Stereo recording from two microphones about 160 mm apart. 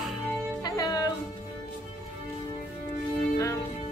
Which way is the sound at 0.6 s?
25° left (ahead or behind).